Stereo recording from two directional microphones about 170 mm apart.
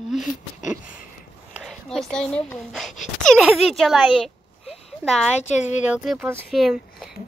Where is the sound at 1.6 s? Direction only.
Centre (ahead or behind).